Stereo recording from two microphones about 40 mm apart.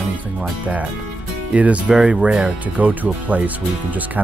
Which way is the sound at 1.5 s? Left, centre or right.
Right.